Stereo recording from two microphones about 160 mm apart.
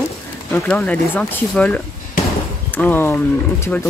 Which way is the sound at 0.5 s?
10° left (ahead or behind).